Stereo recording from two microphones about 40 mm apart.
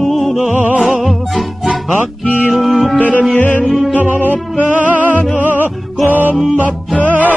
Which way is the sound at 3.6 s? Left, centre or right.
Centre.